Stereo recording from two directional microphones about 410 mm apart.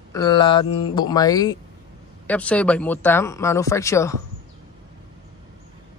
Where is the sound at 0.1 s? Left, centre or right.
Centre.